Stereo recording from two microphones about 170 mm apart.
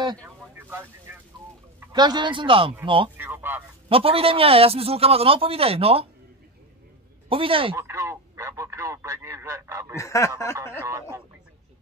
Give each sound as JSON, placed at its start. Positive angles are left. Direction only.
{"t": 0.0, "sound": "speech", "side_deg": -25}
{"t": 0.7, "sound": "vehicle", "side_deg": -15}
{"t": 1.9, "sound": "a man's voice", "side_deg": -25}
{"t": 3.2, "sound": "speech", "side_deg": -10}
{"t": 3.9, "sound": "a man's voice", "side_deg": -35}
{"t": 7.2, "sound": "speech", "side_deg": -30}
{"t": 7.7, "sound": "speech", "side_deg": -15}
{"t": 9.9, "sound": "speech", "side_deg": 15}
{"t": 10.8, "sound": "speech", "side_deg": -15}